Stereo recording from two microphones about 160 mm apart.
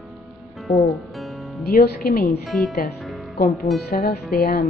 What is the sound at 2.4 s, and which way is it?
Speech, centre (ahead or behind).